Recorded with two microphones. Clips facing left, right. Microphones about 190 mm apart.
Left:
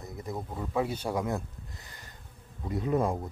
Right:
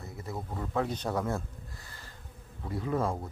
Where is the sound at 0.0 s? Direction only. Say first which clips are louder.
Left 2 dB; 15° left (ahead or behind).